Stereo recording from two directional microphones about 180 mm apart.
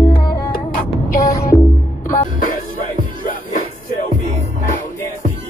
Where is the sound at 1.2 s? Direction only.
20° left (ahead or behind).